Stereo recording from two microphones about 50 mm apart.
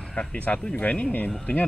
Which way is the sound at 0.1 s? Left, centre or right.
Left.